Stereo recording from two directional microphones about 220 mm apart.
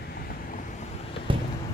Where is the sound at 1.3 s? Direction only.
25° right (ahead or behind).